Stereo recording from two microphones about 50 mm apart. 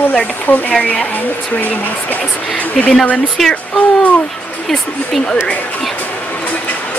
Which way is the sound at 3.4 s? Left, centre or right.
Centre.